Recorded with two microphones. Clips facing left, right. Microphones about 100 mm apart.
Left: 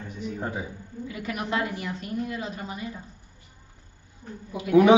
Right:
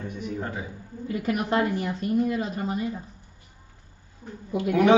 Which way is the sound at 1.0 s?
40° right (ahead or behind).